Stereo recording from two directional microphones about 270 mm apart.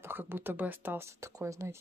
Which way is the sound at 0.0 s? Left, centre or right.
Centre.